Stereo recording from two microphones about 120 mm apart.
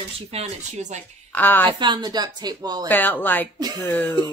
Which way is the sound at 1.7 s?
40° right (ahead or behind).